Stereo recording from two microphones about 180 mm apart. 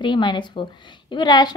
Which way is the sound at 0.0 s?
25° left (ahead or behind).